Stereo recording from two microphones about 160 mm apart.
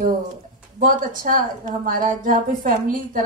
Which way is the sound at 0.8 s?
60° right (ahead or behind).